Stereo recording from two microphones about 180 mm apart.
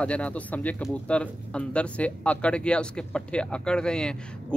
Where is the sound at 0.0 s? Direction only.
5° left (ahead or behind).